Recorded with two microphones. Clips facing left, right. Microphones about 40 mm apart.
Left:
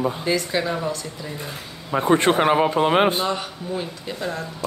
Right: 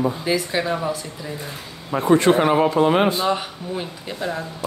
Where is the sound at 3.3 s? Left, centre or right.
Centre.